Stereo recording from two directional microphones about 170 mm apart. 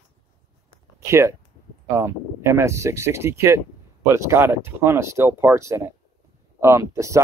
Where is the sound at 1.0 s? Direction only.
15° right (ahead or behind).